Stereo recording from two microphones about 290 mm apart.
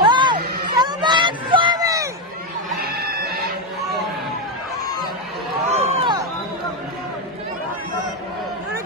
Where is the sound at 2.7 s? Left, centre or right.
Right.